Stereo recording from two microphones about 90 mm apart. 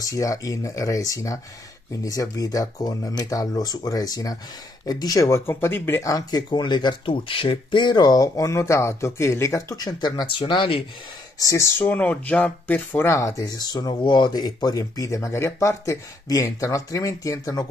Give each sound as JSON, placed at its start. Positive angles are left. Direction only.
{"t": 0.0, "sound": "speech", "side_deg": 40}
{"t": 5.2, "sound": "speech", "side_deg": 30}
{"t": 6.0, "sound": "speech", "side_deg": 40}
{"t": 6.5, "sound": "speech", "side_deg": 55}
{"t": 9.8, "sound": "speech", "side_deg": 50}
{"t": 11.3, "sound": "speech", "side_deg": 35}
{"t": 11.8, "sound": "speech", "side_deg": 15}